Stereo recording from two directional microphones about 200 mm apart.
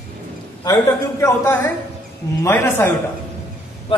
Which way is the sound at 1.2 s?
10° left (ahead or behind).